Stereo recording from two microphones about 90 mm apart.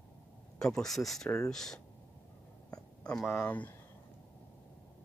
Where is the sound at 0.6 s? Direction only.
5° left (ahead or behind).